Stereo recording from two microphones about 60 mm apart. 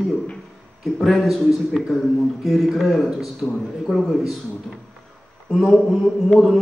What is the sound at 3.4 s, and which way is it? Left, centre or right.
Speech, centre.